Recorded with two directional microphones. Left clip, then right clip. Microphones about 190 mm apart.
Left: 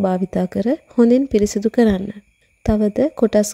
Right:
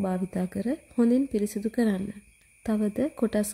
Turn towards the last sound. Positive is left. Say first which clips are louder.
# left 12 dB
turn(degrees=35)  # may be behind; listen again after turning